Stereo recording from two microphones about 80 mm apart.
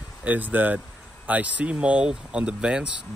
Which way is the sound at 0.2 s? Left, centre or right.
Centre.